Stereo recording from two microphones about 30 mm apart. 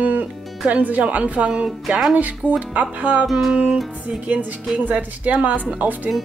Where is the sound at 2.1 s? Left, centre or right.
Right.